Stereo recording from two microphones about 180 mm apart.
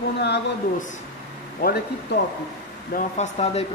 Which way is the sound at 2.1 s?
70° left (ahead or behind).